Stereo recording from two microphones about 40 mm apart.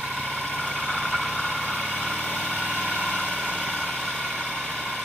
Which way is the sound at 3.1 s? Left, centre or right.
Centre.